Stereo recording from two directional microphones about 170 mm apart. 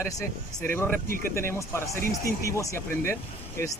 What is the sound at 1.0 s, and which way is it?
Speech, 55° right (ahead or behind).